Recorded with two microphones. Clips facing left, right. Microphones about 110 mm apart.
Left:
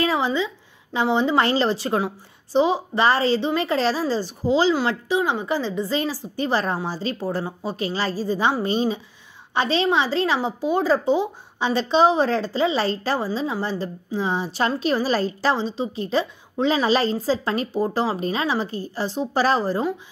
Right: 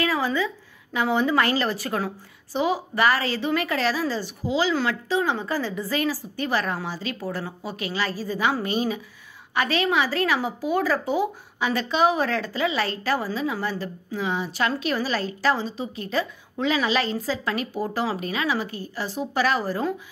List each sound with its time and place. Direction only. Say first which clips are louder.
0.0 s a sound: left 2 dB; 25° left (ahead or behind)
0.9 s a woman's voice: left 2 dB; 25° left (ahead or behind)
4.8 s a woman's voice: left 2 dB; 15° left (ahead or behind)